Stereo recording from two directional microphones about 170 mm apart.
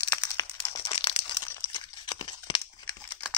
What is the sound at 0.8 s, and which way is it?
Crumpling, 30° left (ahead or behind).